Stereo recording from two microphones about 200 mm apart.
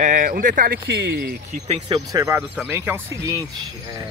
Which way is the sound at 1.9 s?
15° right (ahead or behind).